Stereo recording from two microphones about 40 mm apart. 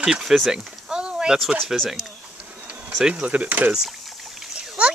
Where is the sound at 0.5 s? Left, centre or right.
Centre.